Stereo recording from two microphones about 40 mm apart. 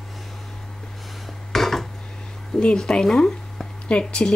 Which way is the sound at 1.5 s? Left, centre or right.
Centre.